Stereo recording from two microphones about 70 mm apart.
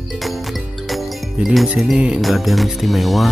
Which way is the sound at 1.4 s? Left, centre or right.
Centre.